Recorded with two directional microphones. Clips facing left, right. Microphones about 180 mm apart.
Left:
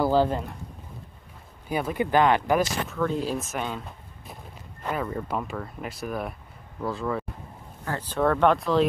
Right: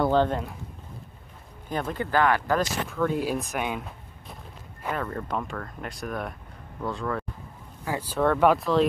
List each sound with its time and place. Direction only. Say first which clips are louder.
0.0 s speech: even; 5° left (ahead or behind)
1.7 s speech: left 3 dB; 10° left (ahead or behind)
2.6 s speech: even; centre (ahead or behind)
4.9 s speech: left 1 dB; 10° left (ahead or behind)
7.8 s speech: even; 10° right (ahead or behind)